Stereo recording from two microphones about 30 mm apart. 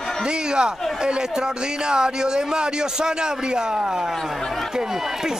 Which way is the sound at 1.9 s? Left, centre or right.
Right.